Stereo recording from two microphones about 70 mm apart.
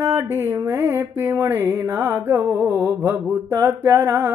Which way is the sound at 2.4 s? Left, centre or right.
Right.